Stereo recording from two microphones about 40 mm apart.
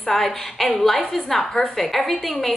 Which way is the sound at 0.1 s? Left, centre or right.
Centre.